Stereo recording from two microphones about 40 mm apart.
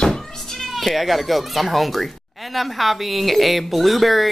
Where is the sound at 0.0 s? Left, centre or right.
Centre.